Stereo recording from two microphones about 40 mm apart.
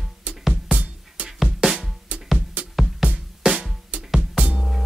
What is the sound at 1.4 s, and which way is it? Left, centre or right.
Music, centre.